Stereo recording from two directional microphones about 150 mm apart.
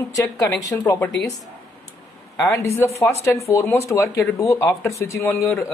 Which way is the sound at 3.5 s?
15° left (ahead or behind).